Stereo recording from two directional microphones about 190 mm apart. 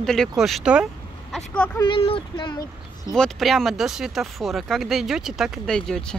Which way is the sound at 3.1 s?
Centre (ahead or behind).